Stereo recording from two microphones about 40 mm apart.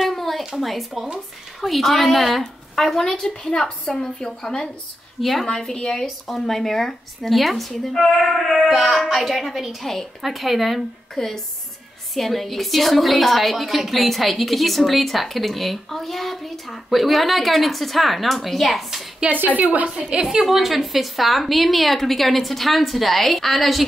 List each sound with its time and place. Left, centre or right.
0.1 s a sound: centre
0.6 s a woman's voice: centre
5.2 s a woman's voice: centre
11.1 s a woman's voice: centre
19.4 s a woman's voice: right
19.9 s a woman's voice: right
20.2 s a woman's voice: centre